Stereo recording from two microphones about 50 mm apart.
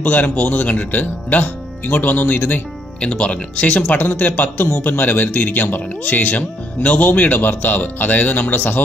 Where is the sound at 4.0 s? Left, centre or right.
Left.